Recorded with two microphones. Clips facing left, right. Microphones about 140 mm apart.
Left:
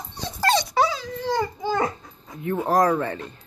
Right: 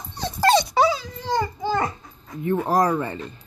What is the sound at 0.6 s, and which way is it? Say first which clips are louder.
Dog: right 3 dB; 5° right (ahead or behind).